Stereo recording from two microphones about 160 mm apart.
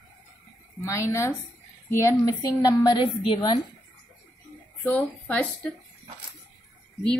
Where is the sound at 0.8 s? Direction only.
20° left (ahead or behind).